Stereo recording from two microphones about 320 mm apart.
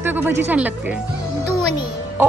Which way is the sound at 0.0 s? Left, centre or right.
Centre.